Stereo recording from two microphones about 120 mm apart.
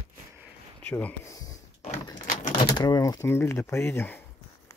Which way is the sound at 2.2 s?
90° left.